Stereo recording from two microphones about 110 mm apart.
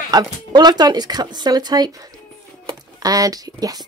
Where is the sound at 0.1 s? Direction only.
40° right (ahead or behind).